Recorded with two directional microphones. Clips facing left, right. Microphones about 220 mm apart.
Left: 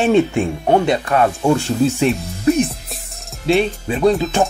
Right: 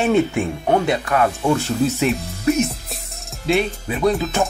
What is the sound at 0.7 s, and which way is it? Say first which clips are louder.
Speech: left 3 dB; 35° left (ahead or behind).